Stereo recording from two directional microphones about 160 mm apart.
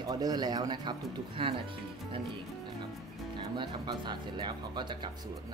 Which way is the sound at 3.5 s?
30° right (ahead or behind).